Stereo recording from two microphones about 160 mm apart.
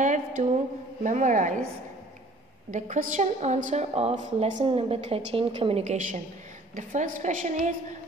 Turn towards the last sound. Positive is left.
turn(degrees=-50)  # may be behind; listen again after turning